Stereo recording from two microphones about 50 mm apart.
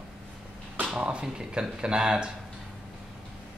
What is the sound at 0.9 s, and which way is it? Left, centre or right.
Speech, centre.